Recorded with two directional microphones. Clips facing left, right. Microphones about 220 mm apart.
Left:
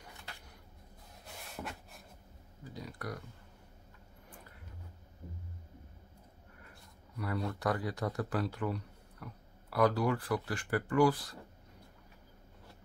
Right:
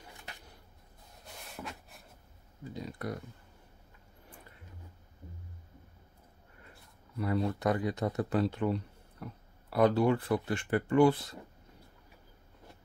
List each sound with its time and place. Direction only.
1.2 s cupboard open or close: centre (ahead or behind)
2.6 s a sound: 25° right (ahead or behind)
7.2 s speech: 25° right (ahead or behind)